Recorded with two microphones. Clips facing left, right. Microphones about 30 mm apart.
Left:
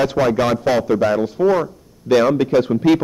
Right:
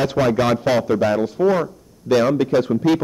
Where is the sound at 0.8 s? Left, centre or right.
Centre.